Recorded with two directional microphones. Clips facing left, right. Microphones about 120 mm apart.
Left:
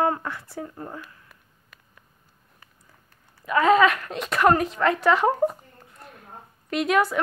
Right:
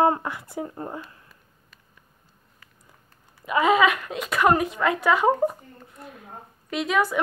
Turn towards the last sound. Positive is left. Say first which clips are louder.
# left 2 dB
turn(degrees=0)  # may be behind; listen again after turning